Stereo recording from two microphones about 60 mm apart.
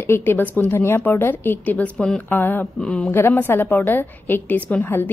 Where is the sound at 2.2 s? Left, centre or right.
Left.